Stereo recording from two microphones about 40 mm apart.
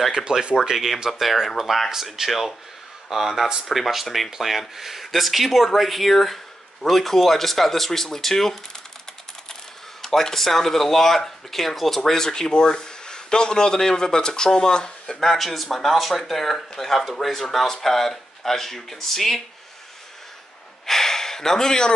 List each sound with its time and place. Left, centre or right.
0.1 s speech: centre
1.2 s speech: centre
10.0 s speech: centre
20.8 s a sound: centre